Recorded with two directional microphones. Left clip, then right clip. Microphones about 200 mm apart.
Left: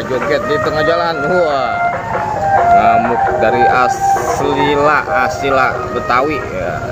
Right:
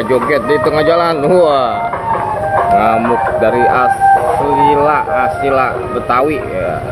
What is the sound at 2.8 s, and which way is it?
Speech, 10° right (ahead or behind).